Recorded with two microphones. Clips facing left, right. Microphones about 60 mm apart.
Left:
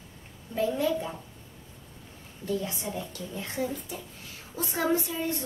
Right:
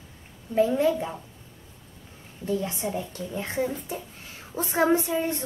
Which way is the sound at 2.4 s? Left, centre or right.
Right.